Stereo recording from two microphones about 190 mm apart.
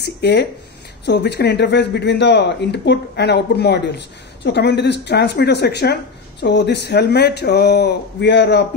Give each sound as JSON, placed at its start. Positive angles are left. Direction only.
{"t": 0.0, "sound": "speech", "side_deg": 60}